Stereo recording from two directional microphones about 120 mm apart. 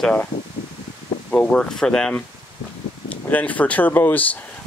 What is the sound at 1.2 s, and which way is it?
Speech, 10° left (ahead or behind).